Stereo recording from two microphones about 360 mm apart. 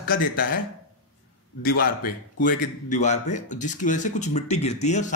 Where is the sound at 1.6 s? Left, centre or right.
Left.